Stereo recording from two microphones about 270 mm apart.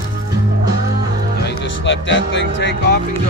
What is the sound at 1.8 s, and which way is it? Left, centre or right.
Music, left.